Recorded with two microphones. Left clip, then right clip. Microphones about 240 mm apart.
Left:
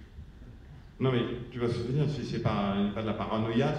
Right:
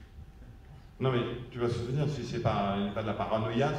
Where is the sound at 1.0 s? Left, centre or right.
Right.